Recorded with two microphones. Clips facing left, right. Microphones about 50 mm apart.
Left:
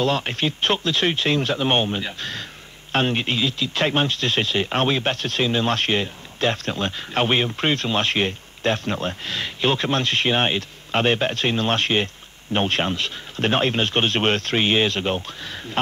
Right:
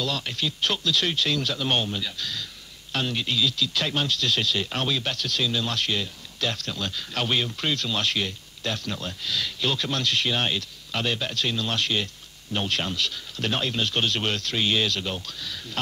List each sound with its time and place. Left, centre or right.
0.0 s speech: left